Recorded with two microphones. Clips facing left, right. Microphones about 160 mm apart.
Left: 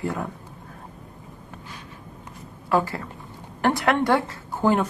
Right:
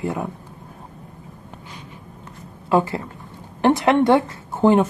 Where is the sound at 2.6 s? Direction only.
20° right (ahead or behind).